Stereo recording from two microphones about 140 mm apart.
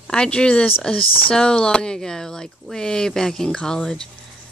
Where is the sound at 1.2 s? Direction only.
5° left (ahead or behind).